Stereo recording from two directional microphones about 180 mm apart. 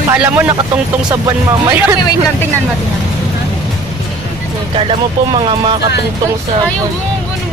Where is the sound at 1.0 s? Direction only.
25° right (ahead or behind).